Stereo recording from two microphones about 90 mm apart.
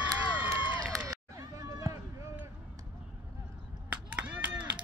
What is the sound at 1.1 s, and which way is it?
Run, 40° right (ahead or behind).